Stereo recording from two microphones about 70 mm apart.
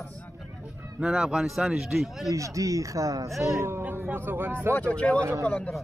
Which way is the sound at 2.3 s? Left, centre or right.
Right.